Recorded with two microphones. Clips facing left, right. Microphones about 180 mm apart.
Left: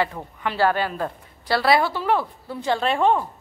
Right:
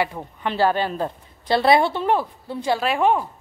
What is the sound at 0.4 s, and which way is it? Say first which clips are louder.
A woman's voice: right 1 dB; 20° right (ahead or behind).